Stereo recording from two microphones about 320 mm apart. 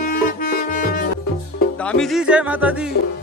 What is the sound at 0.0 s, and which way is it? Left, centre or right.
Music, left.